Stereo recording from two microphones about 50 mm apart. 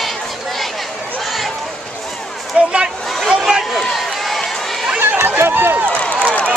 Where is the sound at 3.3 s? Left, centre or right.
Centre.